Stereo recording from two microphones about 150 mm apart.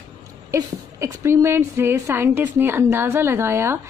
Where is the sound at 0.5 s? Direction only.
20° right (ahead or behind).